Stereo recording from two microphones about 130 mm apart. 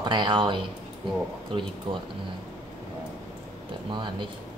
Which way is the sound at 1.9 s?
40° right (ahead or behind).